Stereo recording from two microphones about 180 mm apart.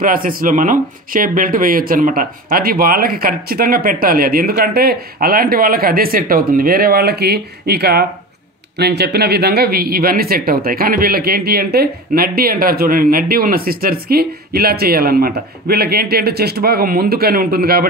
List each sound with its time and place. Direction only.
0.0 s speech: 50° right (ahead or behind)